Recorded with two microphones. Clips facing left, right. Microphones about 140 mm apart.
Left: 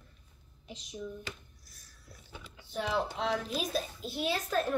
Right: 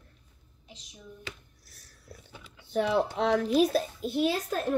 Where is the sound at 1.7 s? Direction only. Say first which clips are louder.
Right 7 dB; 75° right (ahead or behind).